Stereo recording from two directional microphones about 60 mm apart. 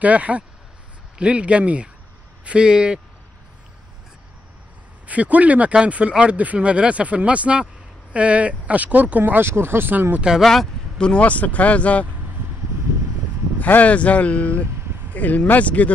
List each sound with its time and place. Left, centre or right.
0.0 s speech: right
5.0 s speech: right
10.4 s speech: centre
11.0 s speech: centre
13.6 s speech: left